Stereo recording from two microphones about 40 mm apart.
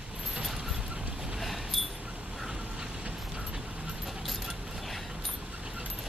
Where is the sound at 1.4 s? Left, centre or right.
Centre.